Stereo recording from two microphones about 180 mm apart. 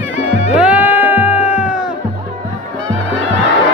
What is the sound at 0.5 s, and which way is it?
Music, 5° right (ahead or behind).